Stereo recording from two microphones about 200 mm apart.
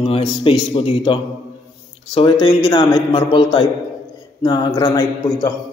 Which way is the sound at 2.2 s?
25° left (ahead or behind).